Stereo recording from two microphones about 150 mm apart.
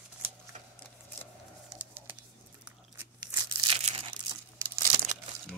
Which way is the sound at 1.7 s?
15° right (ahead or behind).